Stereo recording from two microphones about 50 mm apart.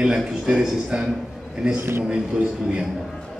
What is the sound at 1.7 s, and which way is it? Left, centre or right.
Speech, right.